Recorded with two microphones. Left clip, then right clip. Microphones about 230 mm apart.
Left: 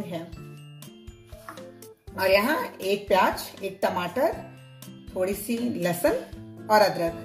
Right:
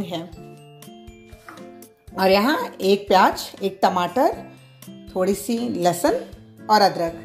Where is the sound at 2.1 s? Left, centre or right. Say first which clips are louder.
Right 4 dB; right.